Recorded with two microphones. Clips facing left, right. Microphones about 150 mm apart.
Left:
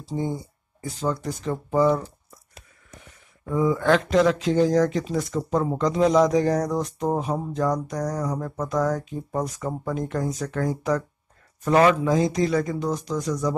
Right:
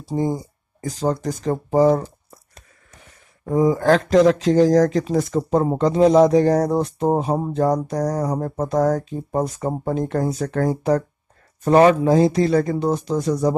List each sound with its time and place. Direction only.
0.1 s speech: 40° right (ahead or behind)
3.4 s speech: 40° right (ahead or behind)